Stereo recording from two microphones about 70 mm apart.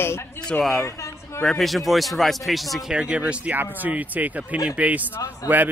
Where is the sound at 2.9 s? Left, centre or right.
Centre.